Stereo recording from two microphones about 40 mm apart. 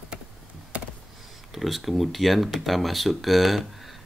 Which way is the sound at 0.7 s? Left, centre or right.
Right.